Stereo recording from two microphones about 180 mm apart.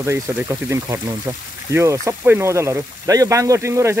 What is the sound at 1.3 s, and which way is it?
Speech, 20° right (ahead or behind).